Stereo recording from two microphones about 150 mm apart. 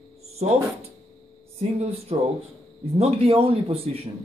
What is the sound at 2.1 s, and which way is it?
Speech, 40° right (ahead or behind).